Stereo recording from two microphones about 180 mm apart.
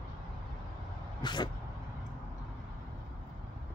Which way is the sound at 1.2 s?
25° left (ahead or behind).